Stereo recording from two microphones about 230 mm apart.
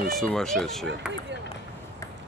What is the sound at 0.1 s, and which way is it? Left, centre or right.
Speech, centre.